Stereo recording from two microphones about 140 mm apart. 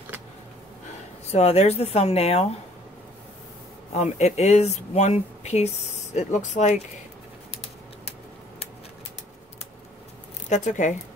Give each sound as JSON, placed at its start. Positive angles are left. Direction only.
{"t": 1.2, "sound": "speech", "side_deg": 50}
{"t": 3.9, "sound": "speech", "side_deg": 50}
{"t": 10.5, "sound": "speech", "side_deg": 60}